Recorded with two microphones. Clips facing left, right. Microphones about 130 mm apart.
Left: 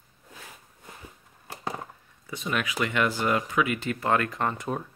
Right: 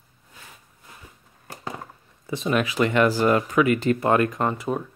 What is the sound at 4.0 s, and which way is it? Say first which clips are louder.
Speech: right 5 dB; 20° right (ahead or behind).